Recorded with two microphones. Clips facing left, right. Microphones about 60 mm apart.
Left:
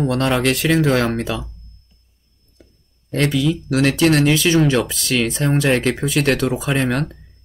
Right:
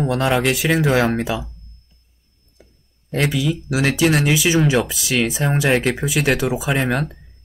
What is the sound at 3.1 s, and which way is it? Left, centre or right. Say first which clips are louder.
Speech: left 2 dB; centre.